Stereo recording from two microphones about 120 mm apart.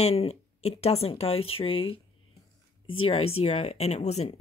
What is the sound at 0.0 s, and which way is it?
Speech, 60° left (ahead or behind).